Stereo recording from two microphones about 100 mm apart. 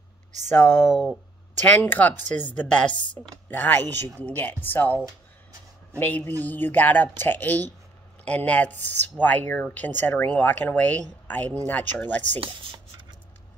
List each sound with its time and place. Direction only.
0.5 s speech: 20° left (ahead or behind)
5.9 s speech: 20° left (ahead or behind)